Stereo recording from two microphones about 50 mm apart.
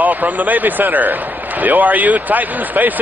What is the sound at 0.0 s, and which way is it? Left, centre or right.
A man's voice, right.